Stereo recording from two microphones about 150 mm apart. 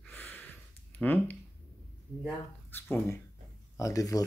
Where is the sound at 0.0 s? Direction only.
10° left (ahead or behind).